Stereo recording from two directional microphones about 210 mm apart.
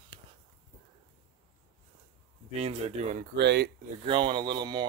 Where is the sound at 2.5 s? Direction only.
30° right (ahead or behind).